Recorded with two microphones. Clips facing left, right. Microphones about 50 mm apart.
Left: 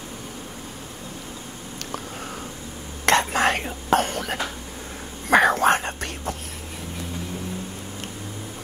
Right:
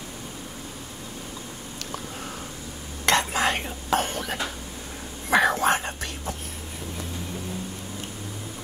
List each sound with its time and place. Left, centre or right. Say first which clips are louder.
3.1 s whispering: left 3 dB; left